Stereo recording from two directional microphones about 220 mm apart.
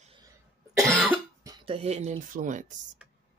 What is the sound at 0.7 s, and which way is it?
Cough, 5° right (ahead or behind).